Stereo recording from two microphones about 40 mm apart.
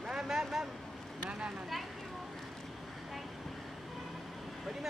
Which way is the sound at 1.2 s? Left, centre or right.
Right.